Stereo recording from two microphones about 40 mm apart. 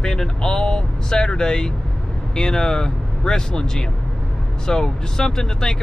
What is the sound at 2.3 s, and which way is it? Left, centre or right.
Speech, centre.